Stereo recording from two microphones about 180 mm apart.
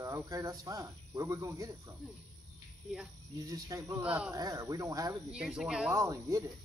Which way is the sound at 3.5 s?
20° right (ahead or behind).